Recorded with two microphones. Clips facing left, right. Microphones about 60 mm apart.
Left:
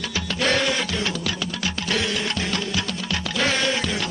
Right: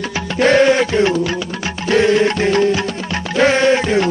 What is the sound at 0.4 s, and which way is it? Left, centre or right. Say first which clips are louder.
Music: right 11 dB; right.